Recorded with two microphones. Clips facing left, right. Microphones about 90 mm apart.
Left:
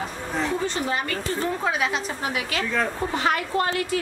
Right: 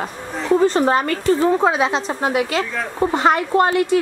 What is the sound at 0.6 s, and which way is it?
Speech, 45° right (ahead or behind).